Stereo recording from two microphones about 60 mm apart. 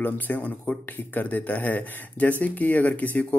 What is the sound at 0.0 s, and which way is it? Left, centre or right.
Speech, left.